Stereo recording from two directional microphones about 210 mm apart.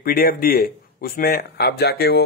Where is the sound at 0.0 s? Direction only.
45° left (ahead or behind).